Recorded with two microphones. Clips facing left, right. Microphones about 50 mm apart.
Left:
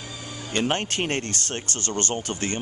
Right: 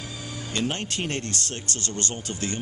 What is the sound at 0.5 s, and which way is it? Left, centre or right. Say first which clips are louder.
Speech: left 4 dB; left.